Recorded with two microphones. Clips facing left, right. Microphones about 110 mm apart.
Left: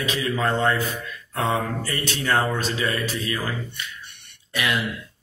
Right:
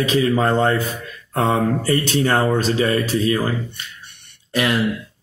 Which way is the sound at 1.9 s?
35° right (ahead or behind).